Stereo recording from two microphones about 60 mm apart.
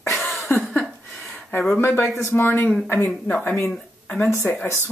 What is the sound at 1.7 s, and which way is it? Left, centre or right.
Speech, left.